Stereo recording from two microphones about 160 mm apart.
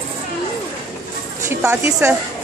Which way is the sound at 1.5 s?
10° right (ahead or behind).